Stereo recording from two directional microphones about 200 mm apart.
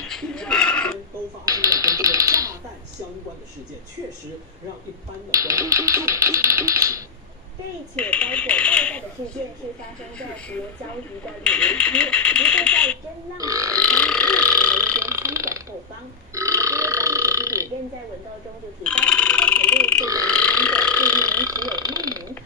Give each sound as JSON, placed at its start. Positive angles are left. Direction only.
{"t": 0.0, "sound": "a sound", "side_deg": 5}
{"t": 1.5, "sound": "typewriter", "side_deg": -15}
{"t": 5.3, "sound": "speech", "side_deg": -15}
{"t": 7.9, "sound": "speech", "side_deg": 5}
{"t": 11.4, "sound": "speech", "side_deg": 5}
{"t": 13.4, "sound": "speech", "side_deg": -15}
{"t": 13.8, "sound": "burping", "side_deg": 5}
{"t": 15.0, "sound": "burping", "side_deg": -15}
{"t": 18.9, "sound": "a sound", "side_deg": 5}
{"t": 20.2, "sound": "burping", "side_deg": 5}
{"t": 21.5, "sound": "speech", "side_deg": -20}